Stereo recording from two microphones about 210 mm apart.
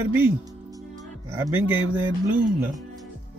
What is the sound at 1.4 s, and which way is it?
Speech, 10° right (ahead or behind).